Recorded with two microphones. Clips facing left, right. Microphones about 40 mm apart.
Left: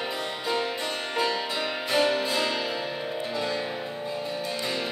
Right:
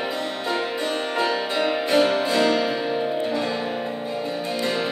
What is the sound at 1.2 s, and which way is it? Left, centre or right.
Music, centre.